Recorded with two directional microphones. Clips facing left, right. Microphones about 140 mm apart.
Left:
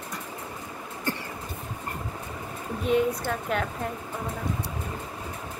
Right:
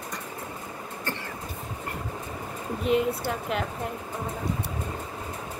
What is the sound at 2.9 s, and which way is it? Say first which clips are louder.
Speech: left 1 dB; 5° right (ahead or behind).